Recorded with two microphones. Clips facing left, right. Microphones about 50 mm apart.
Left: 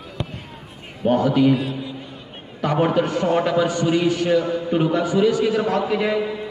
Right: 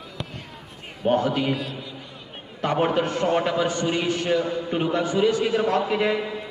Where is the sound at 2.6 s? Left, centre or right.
Right.